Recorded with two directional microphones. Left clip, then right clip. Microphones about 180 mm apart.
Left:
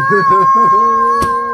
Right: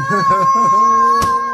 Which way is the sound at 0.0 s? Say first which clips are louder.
Left 4 dB; 20° right (ahead or behind).